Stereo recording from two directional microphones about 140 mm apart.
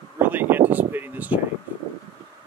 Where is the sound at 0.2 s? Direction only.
15° right (ahead or behind).